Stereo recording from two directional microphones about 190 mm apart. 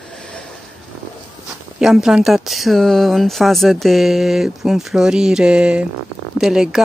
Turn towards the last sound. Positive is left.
turn(degrees=-5)  # may be behind; listen again after turning